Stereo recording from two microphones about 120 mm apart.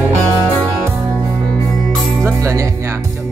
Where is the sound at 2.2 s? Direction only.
25° right (ahead or behind).